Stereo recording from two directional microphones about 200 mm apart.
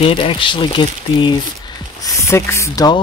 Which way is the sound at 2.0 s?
15° left (ahead or behind).